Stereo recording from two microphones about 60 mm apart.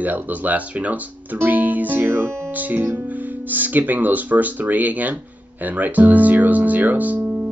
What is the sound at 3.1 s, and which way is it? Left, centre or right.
Speech, right.